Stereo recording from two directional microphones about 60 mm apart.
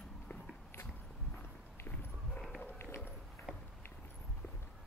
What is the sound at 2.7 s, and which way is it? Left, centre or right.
Run, left.